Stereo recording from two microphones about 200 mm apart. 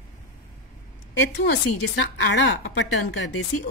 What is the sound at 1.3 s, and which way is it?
A woman's voice, 60° left (ahead or behind).